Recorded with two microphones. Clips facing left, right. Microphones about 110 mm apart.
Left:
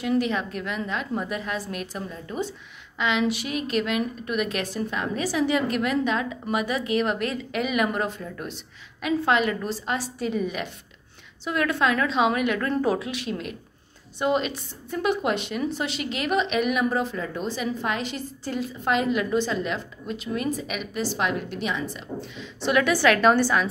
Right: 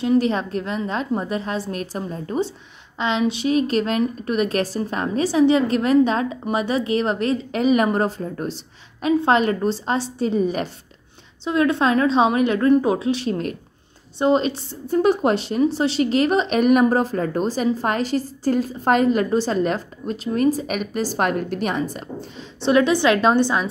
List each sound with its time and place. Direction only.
0.0 s a woman's voice: 30° right (ahead or behind)
11.4 s a woman's voice: 25° right (ahead or behind); by 22.0 s 45° right (ahead or behind)
22.6 s a woman's voice: 30° right (ahead or behind)